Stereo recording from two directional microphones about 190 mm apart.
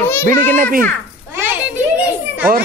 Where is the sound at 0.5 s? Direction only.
45° right (ahead or behind).